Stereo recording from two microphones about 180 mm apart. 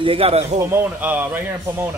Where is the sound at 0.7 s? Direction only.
10° right (ahead or behind).